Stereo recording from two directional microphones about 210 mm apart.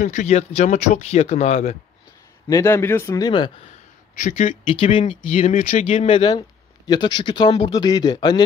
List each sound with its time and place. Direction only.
0.0 s speech: 35° left (ahead or behind)
2.4 s a man's voice: 10° left (ahead or behind)
4.2 s speech: 35° left (ahead or behind); by 8.5 s 20° left (ahead or behind)